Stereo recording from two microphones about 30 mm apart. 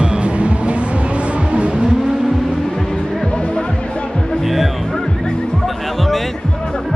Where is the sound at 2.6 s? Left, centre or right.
Centre.